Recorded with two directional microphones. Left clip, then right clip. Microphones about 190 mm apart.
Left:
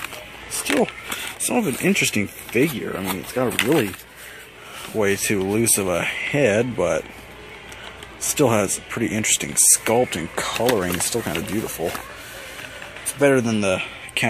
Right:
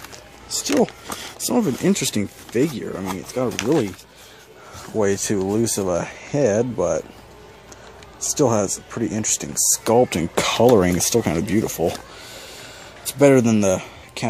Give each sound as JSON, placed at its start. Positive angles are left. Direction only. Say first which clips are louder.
{"t": 1.5, "sound": "speech", "louder": "right 1 dB", "side_deg": -35}
{"t": 1.9, "sound": "speech", "louder": "left 2 dB", "side_deg": -15}
{"t": 5.0, "sound": "speech", "louder": "even", "side_deg": -20}
{"t": 8.2, "sound": "speech", "louder": "even", "side_deg": -10}
{"t": 10.0, "sound": "speech", "louder": "right 4 dB", "side_deg": -55}
{"t": 13.2, "sound": "speech", "louder": "right 3 dB", "side_deg": -50}